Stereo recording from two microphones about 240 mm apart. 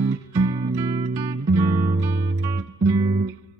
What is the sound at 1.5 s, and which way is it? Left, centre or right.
Guitar, centre.